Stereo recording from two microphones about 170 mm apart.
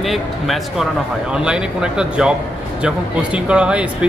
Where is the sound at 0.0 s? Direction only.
Centre (ahead or behind).